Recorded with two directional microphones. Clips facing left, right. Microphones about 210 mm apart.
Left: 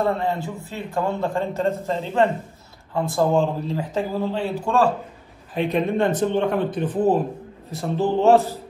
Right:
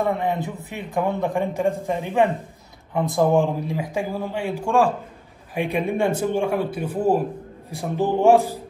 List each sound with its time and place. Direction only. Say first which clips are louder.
0.0 s a man's voice: even; 15° right (ahead or behind)